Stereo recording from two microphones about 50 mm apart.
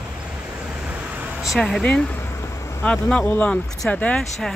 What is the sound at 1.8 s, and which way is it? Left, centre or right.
Speech, left.